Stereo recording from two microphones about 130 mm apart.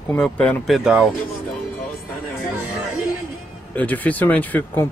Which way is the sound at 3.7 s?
10° left (ahead or behind).